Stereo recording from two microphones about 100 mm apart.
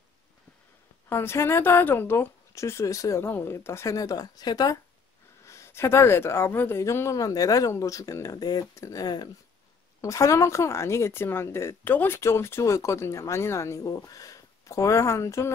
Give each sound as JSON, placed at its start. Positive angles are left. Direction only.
{"t": 1.0, "sound": "speech", "side_deg": 25}
{"t": 5.4, "sound": "speech", "side_deg": 30}
{"t": 10.0, "sound": "speech", "side_deg": 30}